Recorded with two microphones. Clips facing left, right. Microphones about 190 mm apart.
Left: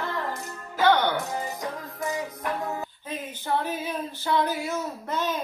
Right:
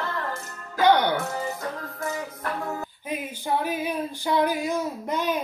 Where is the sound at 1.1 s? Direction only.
15° left (ahead or behind).